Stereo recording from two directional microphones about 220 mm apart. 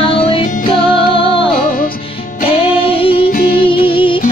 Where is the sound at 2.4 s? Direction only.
25° left (ahead or behind).